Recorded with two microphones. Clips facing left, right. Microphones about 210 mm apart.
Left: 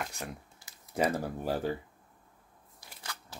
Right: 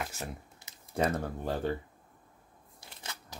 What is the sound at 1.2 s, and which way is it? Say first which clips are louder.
Speech: left 1 dB; 5° left (ahead or behind).